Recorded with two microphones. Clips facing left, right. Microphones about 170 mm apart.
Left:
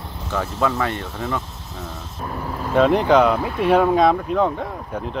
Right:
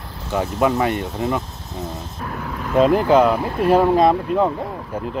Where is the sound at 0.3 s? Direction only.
15° right (ahead or behind).